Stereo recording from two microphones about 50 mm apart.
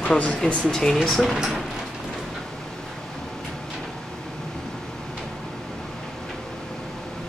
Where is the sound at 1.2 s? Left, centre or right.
Centre.